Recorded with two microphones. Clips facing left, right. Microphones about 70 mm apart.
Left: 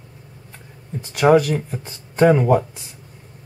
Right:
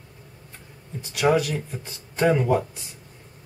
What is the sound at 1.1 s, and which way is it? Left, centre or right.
Speech, left.